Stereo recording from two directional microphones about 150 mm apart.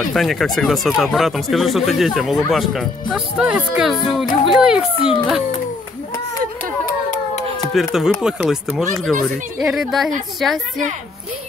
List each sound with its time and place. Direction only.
0.1 s speech: centre (ahead or behind)
6.9 s hands: 60° left (ahead or behind)
7.9 s speech: 5° right (ahead or behind)